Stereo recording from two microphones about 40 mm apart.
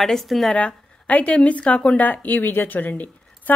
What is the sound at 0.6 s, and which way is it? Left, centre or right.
A woman's voice, left.